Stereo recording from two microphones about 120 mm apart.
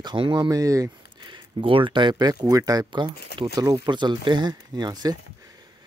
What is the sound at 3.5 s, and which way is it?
Speech, 25° right (ahead or behind).